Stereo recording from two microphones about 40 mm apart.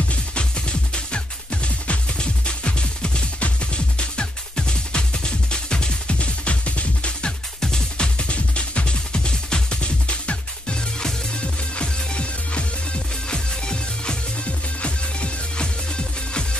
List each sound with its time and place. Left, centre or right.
0.1 s music: left